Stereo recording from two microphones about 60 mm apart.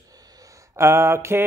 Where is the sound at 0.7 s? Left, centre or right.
Right.